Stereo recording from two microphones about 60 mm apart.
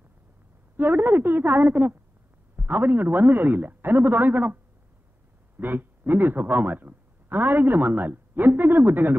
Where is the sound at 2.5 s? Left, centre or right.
Right.